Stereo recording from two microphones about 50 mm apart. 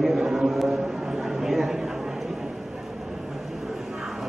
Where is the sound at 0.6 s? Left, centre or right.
Centre.